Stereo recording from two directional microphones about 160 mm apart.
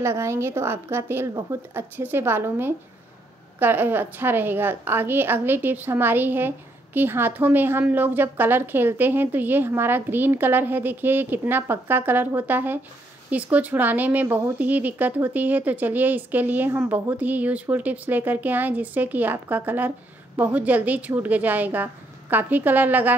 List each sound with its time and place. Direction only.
0.0 s a woman's voice: 15° right (ahead or behind)